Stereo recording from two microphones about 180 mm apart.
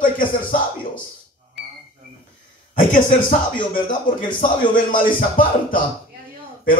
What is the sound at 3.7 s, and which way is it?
Speech, 50° left (ahead or behind).